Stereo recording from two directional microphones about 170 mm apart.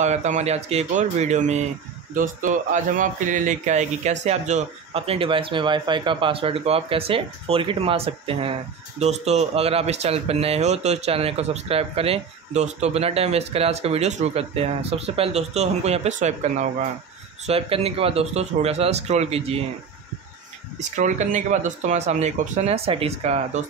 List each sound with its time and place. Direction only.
0.0 s speech: 45° right (ahead or behind)
20.9 s speech: 45° right (ahead or behind)